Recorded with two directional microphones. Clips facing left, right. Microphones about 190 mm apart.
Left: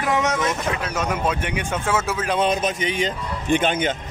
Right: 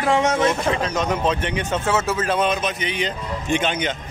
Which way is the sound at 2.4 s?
40° left (ahead or behind).